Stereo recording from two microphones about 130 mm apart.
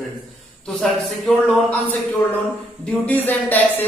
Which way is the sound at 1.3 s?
5° left (ahead or behind).